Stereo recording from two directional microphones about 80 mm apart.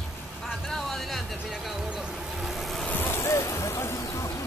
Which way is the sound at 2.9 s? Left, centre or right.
Left.